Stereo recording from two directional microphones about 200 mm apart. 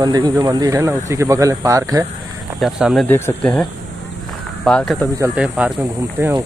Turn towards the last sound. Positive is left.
turn(degrees=-10)  # may be behind; listen again after turning